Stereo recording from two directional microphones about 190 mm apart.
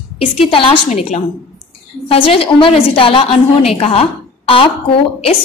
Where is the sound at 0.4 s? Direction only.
30° left (ahead or behind).